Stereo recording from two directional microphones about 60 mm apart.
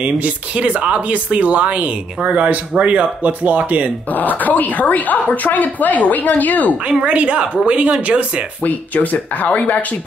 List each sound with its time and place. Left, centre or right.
0.0 s speech: right
4.1 s speech: left
6.9 s speech: centre
8.6 s speech: left